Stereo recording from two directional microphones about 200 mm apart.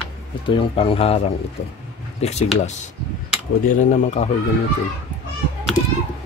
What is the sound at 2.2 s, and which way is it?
Speech, 30° left (ahead or behind).